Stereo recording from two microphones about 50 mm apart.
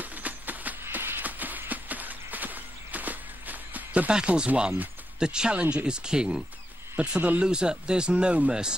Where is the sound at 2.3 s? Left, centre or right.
Right.